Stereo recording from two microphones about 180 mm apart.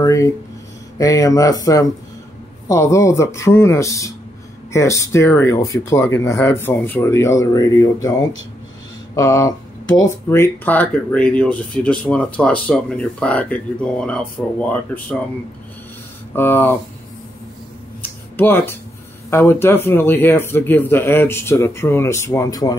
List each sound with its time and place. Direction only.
0.0 s a sound: 15° left (ahead or behind)
0.9 s speech: 20° left (ahead or behind)
9.1 s speech: 15° left (ahead or behind)
16.3 s speech: 10° left (ahead or behind)
18.0 s a sound: 10° left (ahead or behind)
19.3 s speech: 15° left (ahead or behind)